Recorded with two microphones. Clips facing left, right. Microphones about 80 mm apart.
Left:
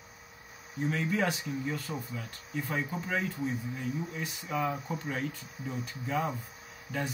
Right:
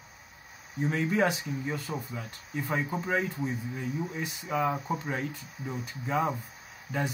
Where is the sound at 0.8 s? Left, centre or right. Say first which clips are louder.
Right 3 dB; right.